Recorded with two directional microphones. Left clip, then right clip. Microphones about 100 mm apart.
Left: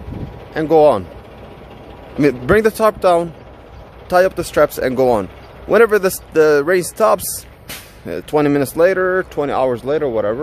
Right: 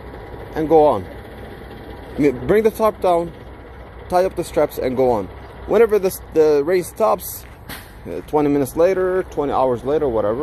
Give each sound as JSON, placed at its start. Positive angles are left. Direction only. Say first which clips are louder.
{"t": 0.6, "sound": "speech", "louder": "left 2 dB", "side_deg": 50}
{"t": 2.1, "sound": "speech", "louder": "left 3 dB", "side_deg": 55}
{"t": 8.1, "sound": "speech", "louder": "left 3 dB", "side_deg": 70}